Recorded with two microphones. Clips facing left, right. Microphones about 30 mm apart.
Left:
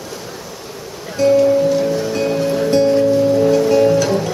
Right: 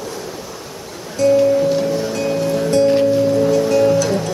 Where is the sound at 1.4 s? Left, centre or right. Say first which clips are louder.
Left 1 dB; centre.